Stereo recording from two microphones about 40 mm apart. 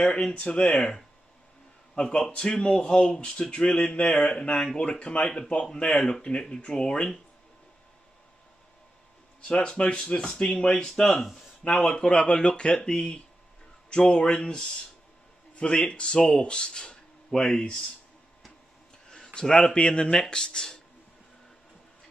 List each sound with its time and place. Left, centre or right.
0.1 s a man's voice: left
5.2 s a man's voice: centre
9.4 s speech: left
19.1 s speech: centre